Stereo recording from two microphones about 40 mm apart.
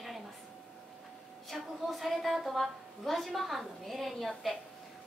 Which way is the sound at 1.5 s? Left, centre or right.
Centre.